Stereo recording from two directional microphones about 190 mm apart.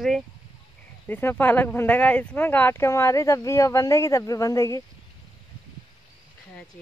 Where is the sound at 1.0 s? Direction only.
10° left (ahead or behind).